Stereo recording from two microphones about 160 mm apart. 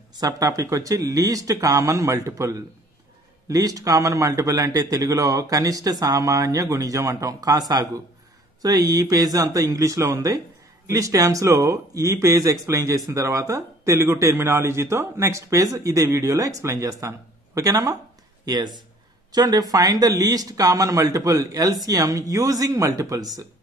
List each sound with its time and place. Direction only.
0.1 s a man's voice: 20° right (ahead or behind)